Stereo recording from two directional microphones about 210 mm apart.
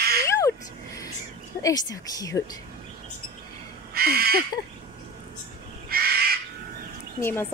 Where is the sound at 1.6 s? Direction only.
15° left (ahead or behind).